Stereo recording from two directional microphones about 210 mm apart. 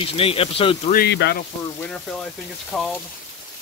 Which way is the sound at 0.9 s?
55° left (ahead or behind).